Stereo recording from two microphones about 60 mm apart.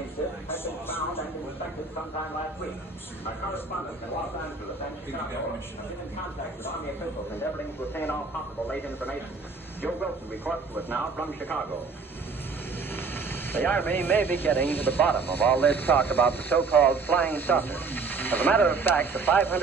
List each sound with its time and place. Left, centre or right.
0.5 s a sound: left
7.3 s speech: left
10.8 s speech: left
12.9 s speech: left